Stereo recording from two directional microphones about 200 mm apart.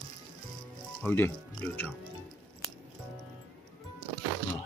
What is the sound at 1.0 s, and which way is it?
Speech, 10° left (ahead or behind).